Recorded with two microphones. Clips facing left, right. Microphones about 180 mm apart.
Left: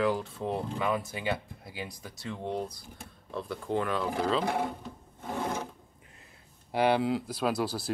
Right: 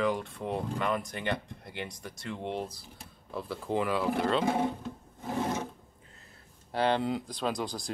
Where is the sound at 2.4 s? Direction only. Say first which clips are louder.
Left 1 dB; 25° right (ahead or behind).